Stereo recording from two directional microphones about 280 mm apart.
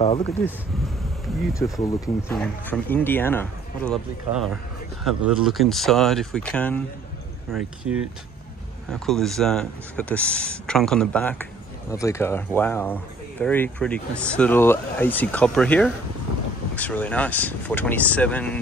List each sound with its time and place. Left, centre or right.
0.0 s speech: left
1.8 s speech: centre